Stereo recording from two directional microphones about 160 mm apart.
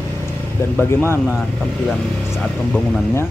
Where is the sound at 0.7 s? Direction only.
15° left (ahead or behind).